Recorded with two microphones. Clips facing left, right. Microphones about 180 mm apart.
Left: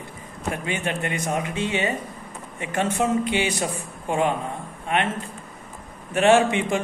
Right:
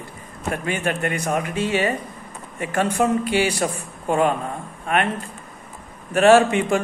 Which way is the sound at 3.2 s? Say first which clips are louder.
Right 3 dB; 20° left (ahead or behind).